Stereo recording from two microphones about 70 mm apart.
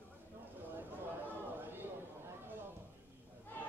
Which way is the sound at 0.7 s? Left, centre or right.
Right.